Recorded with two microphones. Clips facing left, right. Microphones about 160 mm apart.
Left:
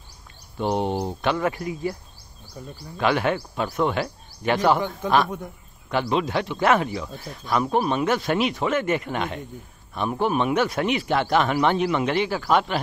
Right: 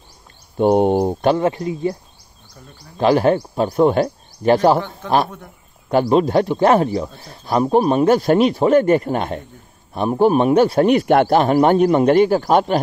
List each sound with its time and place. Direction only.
0.6 s speech: 50° right (ahead or behind)
1.3 s speech: 25° right (ahead or behind)
2.6 s speech: 15° left (ahead or behind)
3.0 s speech: 35° right (ahead or behind)
5.9 s speech: 40° right (ahead or behind)
11.3 s speech: 40° right (ahead or behind)